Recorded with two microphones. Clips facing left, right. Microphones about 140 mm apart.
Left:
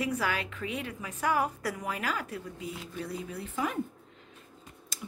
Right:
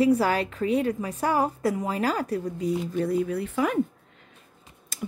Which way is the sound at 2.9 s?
60° right (ahead or behind).